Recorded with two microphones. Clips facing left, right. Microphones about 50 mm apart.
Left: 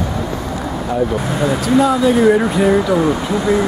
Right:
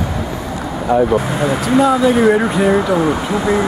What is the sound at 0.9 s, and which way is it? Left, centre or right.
Speech, centre.